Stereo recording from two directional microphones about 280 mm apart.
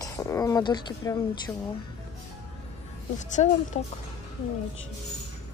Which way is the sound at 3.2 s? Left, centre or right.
Left.